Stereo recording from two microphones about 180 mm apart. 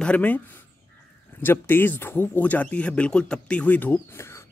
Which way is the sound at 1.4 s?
10° left (ahead or behind).